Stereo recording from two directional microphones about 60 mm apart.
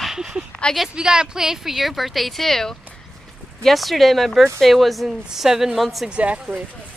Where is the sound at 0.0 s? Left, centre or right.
Centre.